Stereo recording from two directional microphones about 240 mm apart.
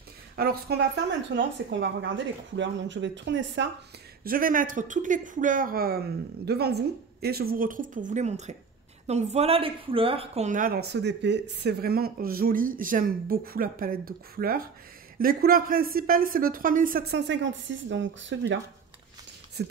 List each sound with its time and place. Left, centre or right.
0.4 s a woman's voice: right
4.2 s a woman's voice: right
19.6 s speech: right